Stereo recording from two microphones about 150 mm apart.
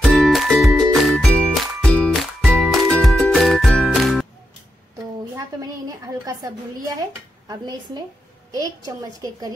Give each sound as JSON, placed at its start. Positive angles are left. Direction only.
{"t": 0.0, "sound": "music", "side_deg": 0}
{"t": 5.3, "sound": "a sound", "side_deg": -25}
{"t": 7.4, "sound": "a woman's voice", "side_deg": -25}